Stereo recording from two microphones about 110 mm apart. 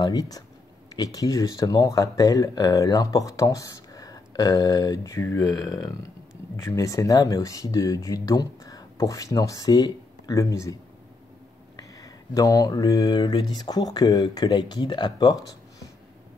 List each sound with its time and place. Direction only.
0.0 s speech: 35° left (ahead or behind)